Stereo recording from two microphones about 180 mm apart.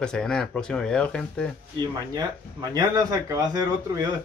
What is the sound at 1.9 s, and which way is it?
Speech, 20° right (ahead or behind).